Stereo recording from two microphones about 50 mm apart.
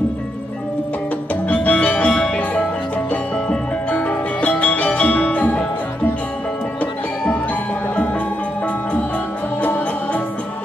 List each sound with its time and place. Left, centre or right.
1.5 s music: left
9.6 s music: left